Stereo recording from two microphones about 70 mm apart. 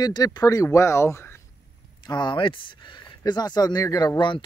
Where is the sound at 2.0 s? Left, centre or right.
Left.